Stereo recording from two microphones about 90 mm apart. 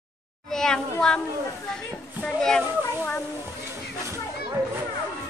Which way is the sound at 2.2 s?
5° left (ahead or behind).